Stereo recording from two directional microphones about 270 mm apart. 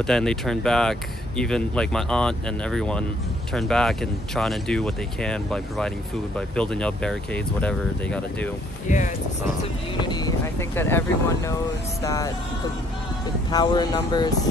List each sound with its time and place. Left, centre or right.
0.0 s speech: centre
8.8 s speech: left
10.0 s speech: centre
13.5 s speech: centre